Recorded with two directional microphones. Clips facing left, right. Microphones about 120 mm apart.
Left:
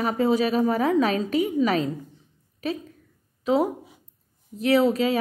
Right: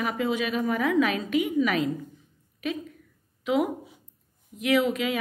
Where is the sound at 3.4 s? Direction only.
35° left (ahead or behind).